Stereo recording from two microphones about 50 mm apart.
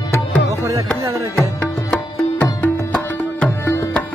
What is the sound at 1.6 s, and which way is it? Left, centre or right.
Music, left.